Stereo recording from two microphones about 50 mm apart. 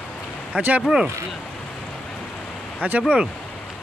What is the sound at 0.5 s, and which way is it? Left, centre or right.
Speech, right.